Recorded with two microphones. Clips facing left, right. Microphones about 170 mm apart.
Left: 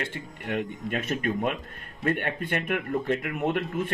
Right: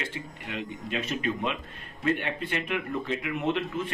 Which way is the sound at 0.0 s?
55° left (ahead or behind).